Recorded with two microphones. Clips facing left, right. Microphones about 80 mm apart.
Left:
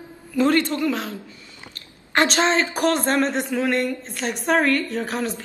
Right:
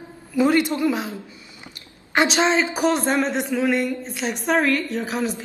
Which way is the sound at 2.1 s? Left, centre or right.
Centre.